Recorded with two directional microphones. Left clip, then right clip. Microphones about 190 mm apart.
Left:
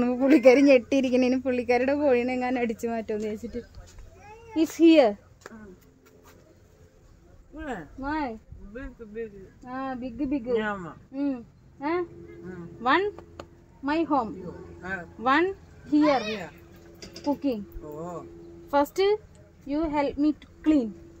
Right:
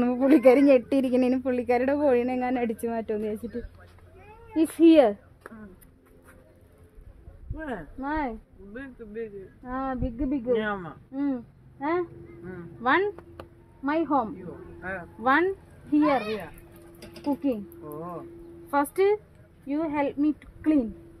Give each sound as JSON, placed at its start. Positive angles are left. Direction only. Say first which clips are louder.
{"t": 0.0, "sound": "speech", "louder": "even", "side_deg": -10}
{"t": 7.5, "sound": "speech", "louder": "even", "side_deg": -35}
{"t": 8.0, "sound": "speech", "louder": "right 1 dB", "side_deg": -20}
{"t": 17.2, "sound": "speech", "louder": "even", "side_deg": -10}
{"t": 18.7, "sound": "speech", "louder": "even", "side_deg": -10}